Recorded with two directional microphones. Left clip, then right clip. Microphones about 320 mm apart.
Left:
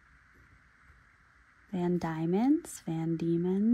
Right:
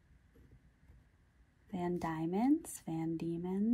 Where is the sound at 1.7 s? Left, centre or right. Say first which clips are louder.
Left 5 dB; left.